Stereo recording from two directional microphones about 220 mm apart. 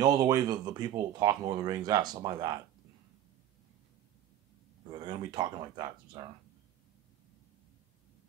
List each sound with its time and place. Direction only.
0.0 s speech: 15° right (ahead or behind)
4.9 s speech: 20° right (ahead or behind)